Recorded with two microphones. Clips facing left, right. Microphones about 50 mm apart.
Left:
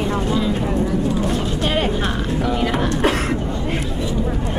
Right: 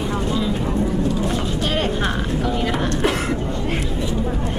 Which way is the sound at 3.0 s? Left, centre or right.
Left.